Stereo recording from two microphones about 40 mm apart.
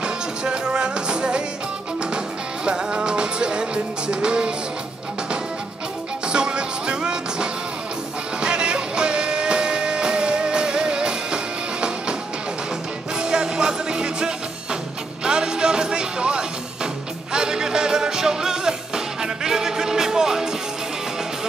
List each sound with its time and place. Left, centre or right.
0.0 s music: right
6.2 s music: right
13.2 s music: centre